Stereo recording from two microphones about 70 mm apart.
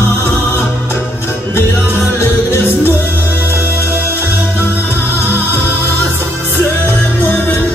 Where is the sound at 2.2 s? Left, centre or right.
Left.